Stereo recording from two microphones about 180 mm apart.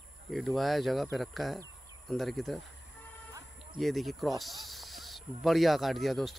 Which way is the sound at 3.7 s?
Centre (ahead or behind).